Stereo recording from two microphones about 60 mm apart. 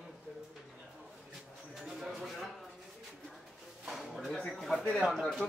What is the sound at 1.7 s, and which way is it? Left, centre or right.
Speech, centre.